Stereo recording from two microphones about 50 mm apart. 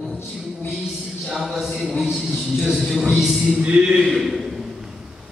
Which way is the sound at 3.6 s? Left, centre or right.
Centre.